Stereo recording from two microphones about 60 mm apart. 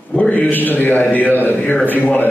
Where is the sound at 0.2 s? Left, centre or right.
Left.